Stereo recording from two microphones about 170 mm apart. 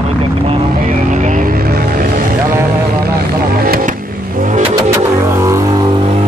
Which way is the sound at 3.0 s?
65° right (ahead or behind).